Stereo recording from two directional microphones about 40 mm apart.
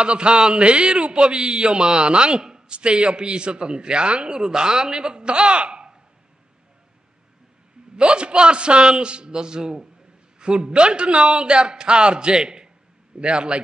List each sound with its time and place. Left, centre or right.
0.0 s a man's voice: right
7.9 s a man's voice: right